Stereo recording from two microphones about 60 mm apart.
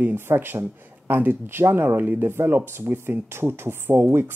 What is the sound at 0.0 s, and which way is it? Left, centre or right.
Speech, right.